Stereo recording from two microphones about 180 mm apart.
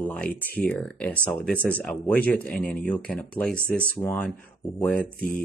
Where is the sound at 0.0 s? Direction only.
10° left (ahead or behind).